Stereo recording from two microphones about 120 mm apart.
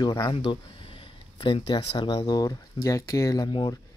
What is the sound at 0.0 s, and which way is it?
Speech, 35° left (ahead or behind).